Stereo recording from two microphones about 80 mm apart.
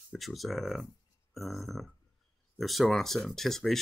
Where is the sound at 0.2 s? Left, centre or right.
Centre.